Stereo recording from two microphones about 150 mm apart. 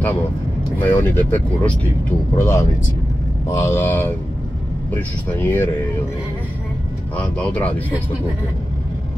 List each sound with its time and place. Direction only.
0.7 s speech: 15° left (ahead or behind)
7.2 s speech: 10° left (ahead or behind)